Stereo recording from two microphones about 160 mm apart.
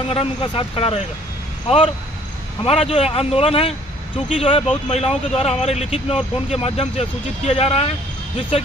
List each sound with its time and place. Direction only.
0.1 s speech: 35° left (ahead or behind)